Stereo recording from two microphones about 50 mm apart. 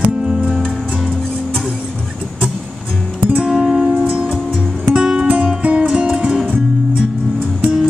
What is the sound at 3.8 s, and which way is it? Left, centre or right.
Music, right.